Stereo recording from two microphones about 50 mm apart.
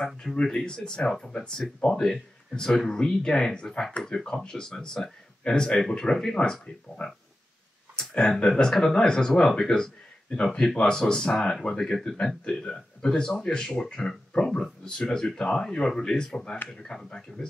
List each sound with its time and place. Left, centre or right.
0.0 s speech: centre